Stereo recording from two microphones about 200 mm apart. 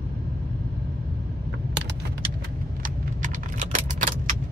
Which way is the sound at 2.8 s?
40° right (ahead or behind).